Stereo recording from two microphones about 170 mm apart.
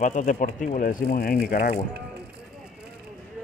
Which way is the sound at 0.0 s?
45° left (ahead or behind).